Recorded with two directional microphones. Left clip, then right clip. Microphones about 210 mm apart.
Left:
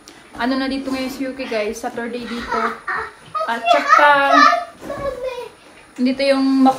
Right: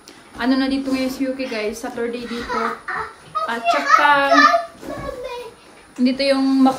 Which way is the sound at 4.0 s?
Centre (ahead or behind).